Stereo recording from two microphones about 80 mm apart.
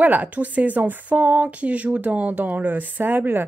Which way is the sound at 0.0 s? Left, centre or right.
Centre.